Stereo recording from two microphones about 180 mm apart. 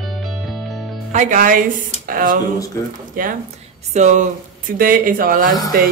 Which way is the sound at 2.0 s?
50° right (ahead or behind).